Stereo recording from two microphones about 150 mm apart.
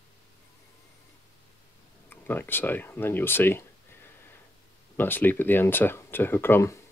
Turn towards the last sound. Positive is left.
turn(degrees=15)  # may be behind; listen again after turning